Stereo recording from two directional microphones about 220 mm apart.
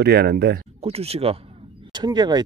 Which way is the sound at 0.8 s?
25° right (ahead or behind).